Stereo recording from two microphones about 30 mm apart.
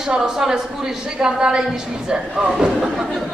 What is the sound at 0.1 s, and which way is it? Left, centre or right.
Speech, centre.